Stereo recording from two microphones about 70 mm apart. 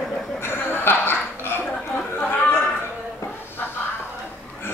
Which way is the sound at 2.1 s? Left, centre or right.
Left.